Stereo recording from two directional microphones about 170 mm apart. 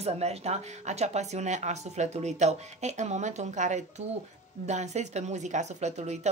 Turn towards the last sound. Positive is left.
turn(degrees=-40)  # may be behind; listen again after turning